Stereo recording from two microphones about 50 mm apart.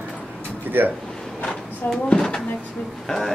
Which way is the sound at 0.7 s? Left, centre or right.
Right.